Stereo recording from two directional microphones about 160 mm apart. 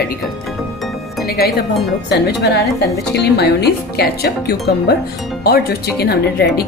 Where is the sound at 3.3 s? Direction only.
90° left.